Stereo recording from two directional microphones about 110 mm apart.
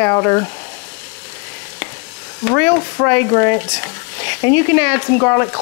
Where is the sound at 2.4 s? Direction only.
25° left (ahead or behind).